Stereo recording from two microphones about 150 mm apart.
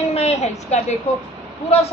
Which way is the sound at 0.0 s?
45° left (ahead or behind).